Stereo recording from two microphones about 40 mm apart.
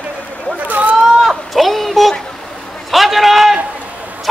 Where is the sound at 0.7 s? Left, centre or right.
Right.